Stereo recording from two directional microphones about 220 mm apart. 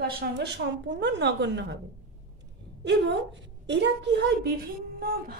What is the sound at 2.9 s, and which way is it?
A woman's voice, 55° right (ahead or behind).